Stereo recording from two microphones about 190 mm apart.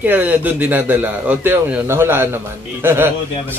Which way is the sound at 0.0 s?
10° right (ahead or behind).